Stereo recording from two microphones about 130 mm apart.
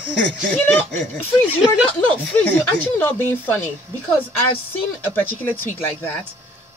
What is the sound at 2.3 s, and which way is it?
Speech, 10° left (ahead or behind).